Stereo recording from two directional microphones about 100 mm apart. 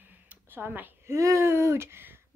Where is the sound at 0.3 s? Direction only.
20° right (ahead or behind).